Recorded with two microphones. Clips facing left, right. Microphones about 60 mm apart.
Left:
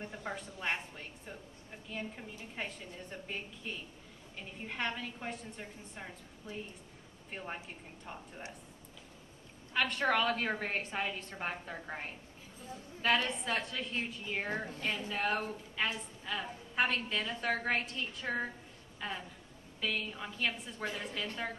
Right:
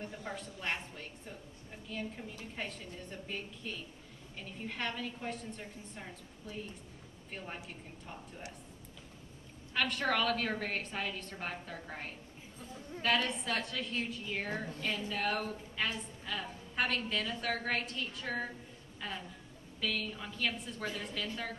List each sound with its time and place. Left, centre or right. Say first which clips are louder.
0.0 s a sound: left 1 dB; centre
1.9 s a woman's voice: right 1 dB; left
9.8 s a woman's voice: left 1 dB; centre